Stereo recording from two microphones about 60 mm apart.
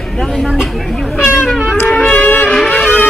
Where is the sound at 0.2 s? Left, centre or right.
Centre.